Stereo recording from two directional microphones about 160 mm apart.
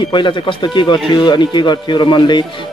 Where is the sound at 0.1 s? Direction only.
30° left (ahead or behind).